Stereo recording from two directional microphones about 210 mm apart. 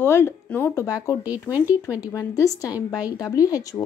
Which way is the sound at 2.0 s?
15° left (ahead or behind).